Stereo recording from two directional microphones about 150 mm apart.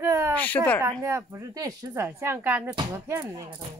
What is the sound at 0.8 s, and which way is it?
A woman's voice, 20° right (ahead or behind).